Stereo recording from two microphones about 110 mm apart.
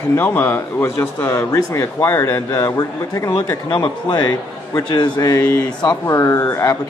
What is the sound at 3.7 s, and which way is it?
Speech, 45° left (ahead or behind).